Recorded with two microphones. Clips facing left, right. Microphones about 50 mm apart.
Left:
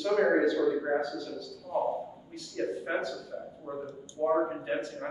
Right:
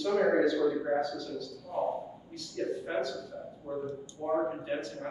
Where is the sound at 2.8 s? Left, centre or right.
Left.